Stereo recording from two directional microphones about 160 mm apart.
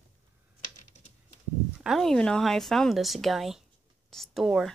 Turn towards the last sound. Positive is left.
turn(degrees=0)  # may be behind; listen again after turning